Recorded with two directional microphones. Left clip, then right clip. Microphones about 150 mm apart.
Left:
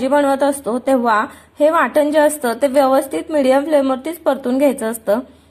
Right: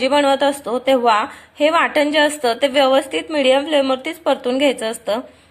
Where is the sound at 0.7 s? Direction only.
30° left (ahead or behind).